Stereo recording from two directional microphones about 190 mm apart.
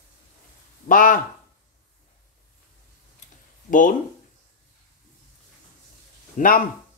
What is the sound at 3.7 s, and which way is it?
Speech, 45° left (ahead or behind).